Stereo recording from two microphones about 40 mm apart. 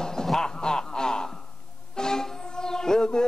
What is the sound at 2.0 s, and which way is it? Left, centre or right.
Music, centre.